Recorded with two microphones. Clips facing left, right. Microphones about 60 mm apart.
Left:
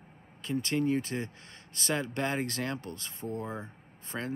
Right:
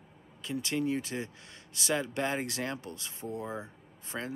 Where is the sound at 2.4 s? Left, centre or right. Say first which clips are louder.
Left 1 dB; centre.